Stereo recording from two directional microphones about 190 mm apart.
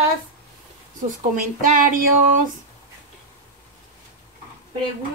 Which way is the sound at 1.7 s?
45° right (ahead or behind).